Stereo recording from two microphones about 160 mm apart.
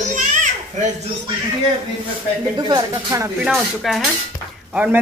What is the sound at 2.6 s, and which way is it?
Speech, 25° right (ahead or behind).